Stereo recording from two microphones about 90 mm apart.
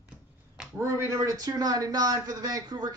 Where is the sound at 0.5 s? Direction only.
5° right (ahead or behind).